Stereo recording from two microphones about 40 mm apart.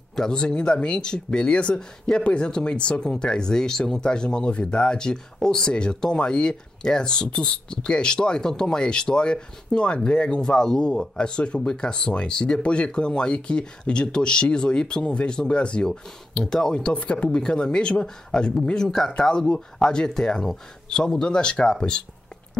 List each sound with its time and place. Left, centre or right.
0.1 s speech: centre
15.9 s speech: centre
16.9 s speech: left; by 22.0 s centre